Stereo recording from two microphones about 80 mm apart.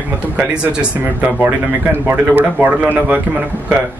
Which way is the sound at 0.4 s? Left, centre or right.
Centre.